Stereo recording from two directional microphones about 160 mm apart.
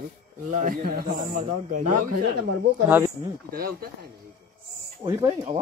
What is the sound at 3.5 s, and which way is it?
Speech, 70° right (ahead or behind).